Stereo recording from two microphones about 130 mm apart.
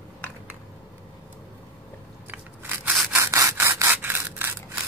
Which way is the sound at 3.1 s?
25° right (ahead or behind).